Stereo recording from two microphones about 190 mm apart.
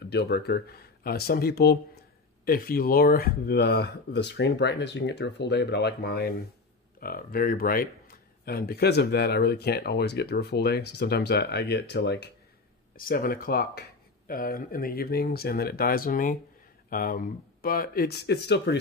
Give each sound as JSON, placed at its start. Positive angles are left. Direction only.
{"t": 0.1, "sound": "speech", "side_deg": 60}
{"t": 12.9, "sound": "speech", "side_deg": 50}